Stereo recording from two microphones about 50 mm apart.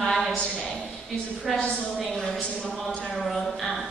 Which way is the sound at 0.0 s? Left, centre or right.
Centre.